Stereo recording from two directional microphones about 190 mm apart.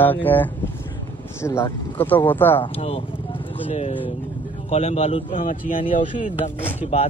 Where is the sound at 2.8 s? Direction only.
30° left (ahead or behind).